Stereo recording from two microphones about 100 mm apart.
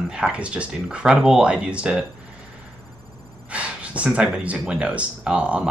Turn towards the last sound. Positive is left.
turn(degrees=-10)  # may be behind; listen again after turning